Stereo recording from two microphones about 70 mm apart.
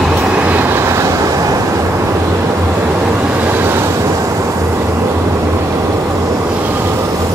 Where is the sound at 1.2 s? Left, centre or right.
Right.